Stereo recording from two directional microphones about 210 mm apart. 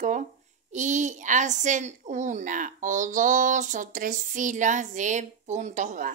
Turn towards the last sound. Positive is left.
turn(degrees=-35)  # may be behind; listen again after turning